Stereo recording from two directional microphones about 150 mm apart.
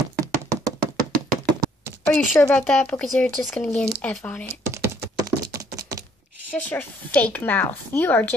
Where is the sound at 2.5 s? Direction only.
5° left (ahead or behind).